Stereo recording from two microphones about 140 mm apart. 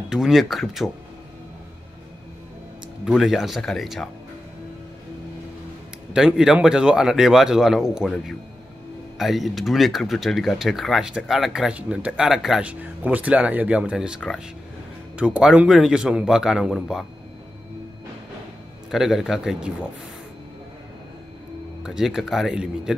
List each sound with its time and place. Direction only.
0.1 s speech: 5° right (ahead or behind)
3.1 s speech: centre (ahead or behind)
6.1 s speech: 5° right (ahead or behind)
18.9 s speech: centre (ahead or behind)
21.8 s speech: 5° right (ahead or behind)